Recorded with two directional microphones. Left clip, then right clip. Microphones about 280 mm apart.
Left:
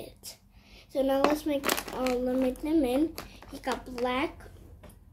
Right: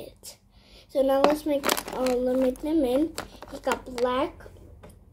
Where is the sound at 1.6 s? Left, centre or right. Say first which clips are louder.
Right 4 dB; right.